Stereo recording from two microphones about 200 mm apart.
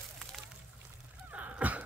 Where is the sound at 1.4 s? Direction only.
5° right (ahead or behind).